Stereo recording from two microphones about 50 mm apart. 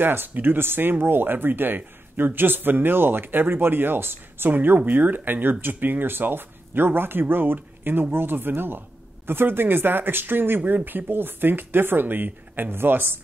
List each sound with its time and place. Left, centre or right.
0.0 s speech: right